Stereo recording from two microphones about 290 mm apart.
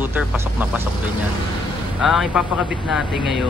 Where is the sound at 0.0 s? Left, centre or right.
Centre.